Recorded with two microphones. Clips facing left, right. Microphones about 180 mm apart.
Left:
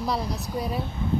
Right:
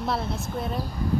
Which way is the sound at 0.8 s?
25° left (ahead or behind).